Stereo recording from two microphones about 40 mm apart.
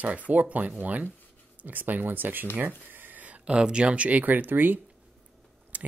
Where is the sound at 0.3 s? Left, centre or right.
Right.